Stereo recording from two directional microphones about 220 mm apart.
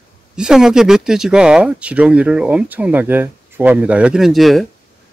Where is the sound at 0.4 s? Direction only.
5° right (ahead or behind).